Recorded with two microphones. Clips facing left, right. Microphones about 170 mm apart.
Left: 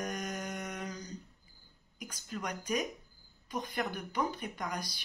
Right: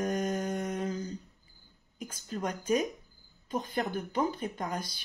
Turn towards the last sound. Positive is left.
turn(degrees=-25)  # may be behind; listen again after turning